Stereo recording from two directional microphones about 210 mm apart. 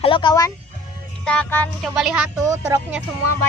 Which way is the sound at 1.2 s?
5° left (ahead or behind).